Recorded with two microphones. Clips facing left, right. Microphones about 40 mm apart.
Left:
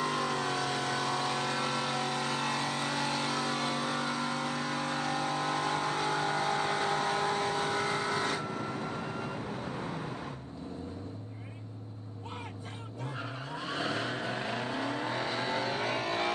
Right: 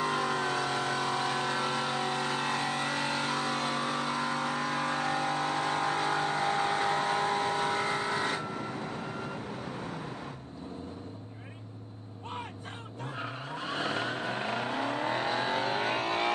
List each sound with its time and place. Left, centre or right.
0.0 s vehicle: centre; by 3.6 s right
3.6 s vehicle: right
8.8 s vehicle: centre
13.7 s vehicle: right